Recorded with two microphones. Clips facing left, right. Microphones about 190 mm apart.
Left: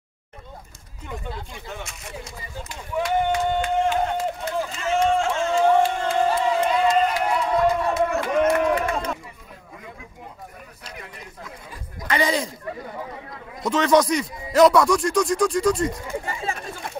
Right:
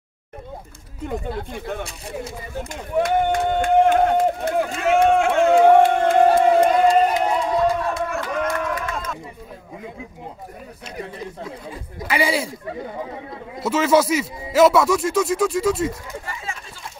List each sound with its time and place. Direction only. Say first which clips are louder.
1.3 s speech: right 7 dB; 60° right (ahead or behind)
1.9 s speech: right 6 dB; 30° right (ahead or behind)
2.5 s run: right 6 dB; 50° right (ahead or behind); by 7.2 s 35° right (ahead or behind)
7.2 s a sound: right 2 dB; 30° right (ahead or behind)
7.6 s run: left 1 dB; 20° left (ahead or behind)
11.0 s speech: right 11 dB; 30° right (ahead or behind)
12.1 s speech: right 1 dB; 10° right (ahead or behind)
13.6 s speech: right 1 dB; 5° right (ahead or behind)
16.1 s speech: left 4 dB; 30° left (ahead or behind)
16.5 s chatter: left 5 dB; 55° left (ahead or behind)